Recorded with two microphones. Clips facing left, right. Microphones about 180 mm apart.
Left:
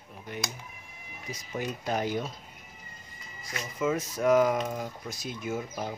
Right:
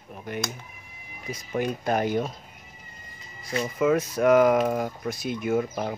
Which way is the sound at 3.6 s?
65° right (ahead or behind).